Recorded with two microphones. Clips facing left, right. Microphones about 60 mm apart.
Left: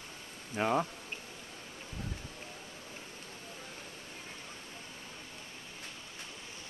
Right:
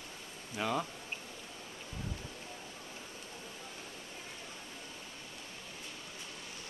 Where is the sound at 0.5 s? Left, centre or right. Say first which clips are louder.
Left 4 dB; left.